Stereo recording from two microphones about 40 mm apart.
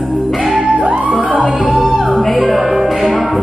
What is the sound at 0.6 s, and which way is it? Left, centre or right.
Music, right.